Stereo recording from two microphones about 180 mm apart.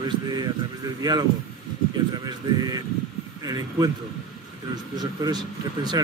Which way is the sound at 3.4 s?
20° right (ahead or behind).